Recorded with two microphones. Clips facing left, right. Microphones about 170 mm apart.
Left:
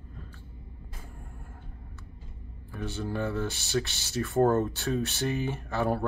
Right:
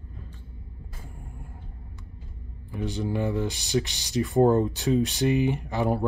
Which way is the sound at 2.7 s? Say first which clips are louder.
Right 5 dB; 15° right (ahead or behind).